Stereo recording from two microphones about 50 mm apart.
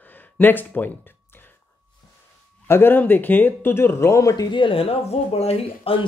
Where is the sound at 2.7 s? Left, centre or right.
Left.